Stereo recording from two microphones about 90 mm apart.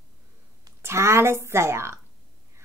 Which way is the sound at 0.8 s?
30° right (ahead or behind).